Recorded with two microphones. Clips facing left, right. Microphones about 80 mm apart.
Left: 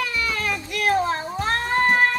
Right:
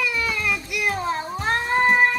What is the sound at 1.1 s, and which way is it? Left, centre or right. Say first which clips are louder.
Cat: even; centre.